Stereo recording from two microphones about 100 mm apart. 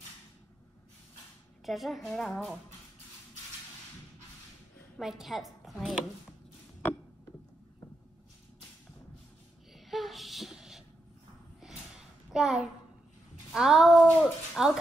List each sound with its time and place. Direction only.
1.7 s speech: centre (ahead or behind)
4.9 s a woman's voice: 5° right (ahead or behind)
9.8 s a sound: centre (ahead or behind)